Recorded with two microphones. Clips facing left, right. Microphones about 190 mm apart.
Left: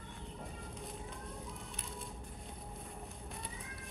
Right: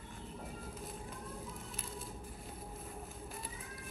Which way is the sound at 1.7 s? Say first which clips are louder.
Right 1 dB; centre (ahead or behind).